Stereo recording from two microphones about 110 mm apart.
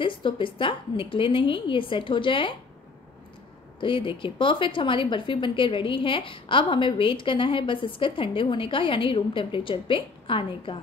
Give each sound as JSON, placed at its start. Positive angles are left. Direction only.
{"t": 0.0, "sound": "a woman's voice", "side_deg": 50}
{"t": 3.8, "sound": "a woman's voice", "side_deg": 50}